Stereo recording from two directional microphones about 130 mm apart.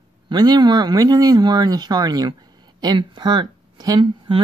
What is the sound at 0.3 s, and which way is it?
Speech, 30° right (ahead or behind).